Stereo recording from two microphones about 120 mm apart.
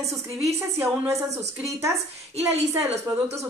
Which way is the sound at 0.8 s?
25° right (ahead or behind).